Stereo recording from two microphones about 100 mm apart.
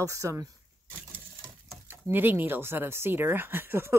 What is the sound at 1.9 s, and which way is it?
Speech, 20° right (ahead or behind).